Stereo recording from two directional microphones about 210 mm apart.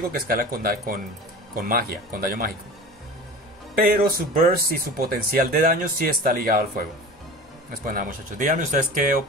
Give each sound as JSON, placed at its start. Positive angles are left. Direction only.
{"t": 0.3, "sound": "speech", "side_deg": -45}
{"t": 3.7, "sound": "speech", "side_deg": -45}
{"t": 7.7, "sound": "speech", "side_deg": -40}